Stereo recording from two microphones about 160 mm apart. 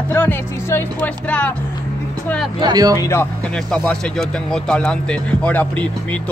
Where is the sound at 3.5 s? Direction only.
5° left (ahead or behind).